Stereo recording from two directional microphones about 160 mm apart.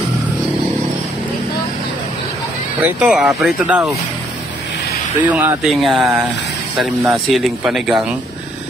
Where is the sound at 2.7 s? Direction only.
10° right (ahead or behind).